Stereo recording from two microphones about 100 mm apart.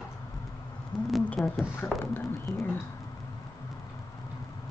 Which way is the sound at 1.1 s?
5° left (ahead or behind).